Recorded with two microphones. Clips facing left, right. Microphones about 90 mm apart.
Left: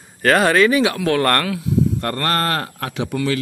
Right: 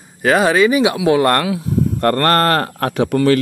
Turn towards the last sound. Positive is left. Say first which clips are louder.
# right 8 dB
turn(degrees=-50)  # may be behind; listen again after turning